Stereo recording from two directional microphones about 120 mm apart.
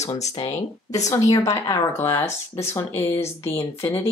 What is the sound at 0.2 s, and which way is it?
Speech, 30° left (ahead or behind).